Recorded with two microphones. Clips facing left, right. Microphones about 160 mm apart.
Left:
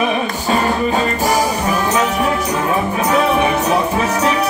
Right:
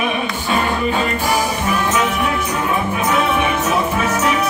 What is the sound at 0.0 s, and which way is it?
Music, 40° left (ahead or behind).